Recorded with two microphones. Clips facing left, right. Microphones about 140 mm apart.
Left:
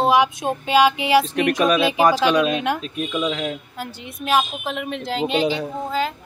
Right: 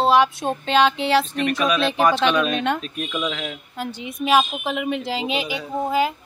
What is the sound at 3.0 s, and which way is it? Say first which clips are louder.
Speech: left 3 dB; 25° left (ahead or behind).